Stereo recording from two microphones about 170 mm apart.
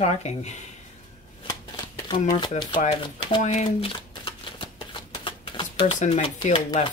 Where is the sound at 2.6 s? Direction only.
45° left (ahead or behind).